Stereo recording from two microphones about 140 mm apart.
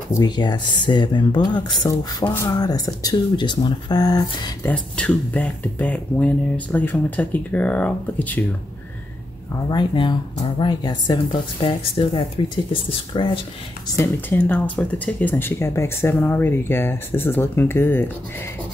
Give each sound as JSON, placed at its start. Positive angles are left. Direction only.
{"t": 0.1, "sound": "speech", "side_deg": 30}
{"t": 4.6, "sound": "speech", "side_deg": 10}
{"t": 9.5, "sound": "speech", "side_deg": 30}
{"t": 13.9, "sound": "speech", "side_deg": 15}